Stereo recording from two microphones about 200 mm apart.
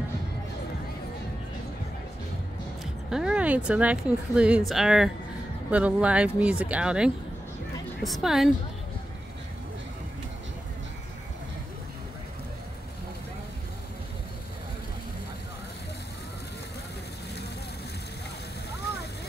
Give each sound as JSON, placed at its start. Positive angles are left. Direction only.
{"t": 2.8, "sound": "a woman's voice", "side_deg": -5}